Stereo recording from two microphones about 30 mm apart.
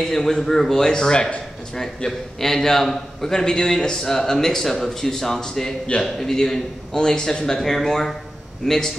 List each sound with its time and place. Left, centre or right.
0.0 s speech: centre
2.4 s speech: centre
3.3 s speech: left